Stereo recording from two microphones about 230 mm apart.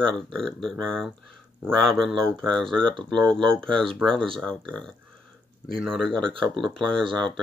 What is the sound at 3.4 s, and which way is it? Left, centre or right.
Speech, right.